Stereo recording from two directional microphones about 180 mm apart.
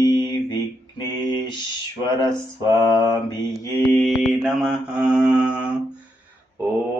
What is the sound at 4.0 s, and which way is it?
Mantra, 5° right (ahead or behind).